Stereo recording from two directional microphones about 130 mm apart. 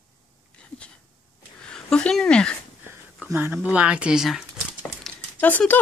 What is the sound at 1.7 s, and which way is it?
Speech, 5° left (ahead or behind).